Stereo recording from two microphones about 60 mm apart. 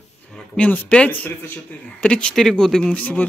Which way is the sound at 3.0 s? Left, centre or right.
Left.